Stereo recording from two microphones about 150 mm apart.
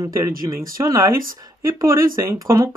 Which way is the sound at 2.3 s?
20° right (ahead or behind).